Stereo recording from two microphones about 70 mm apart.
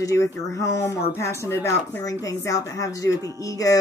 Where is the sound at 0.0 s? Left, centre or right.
Left.